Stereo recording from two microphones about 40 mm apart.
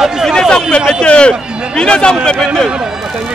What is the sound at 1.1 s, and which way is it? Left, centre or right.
Speech, left.